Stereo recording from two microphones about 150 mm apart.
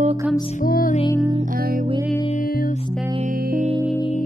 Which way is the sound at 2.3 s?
70° left (ahead or behind).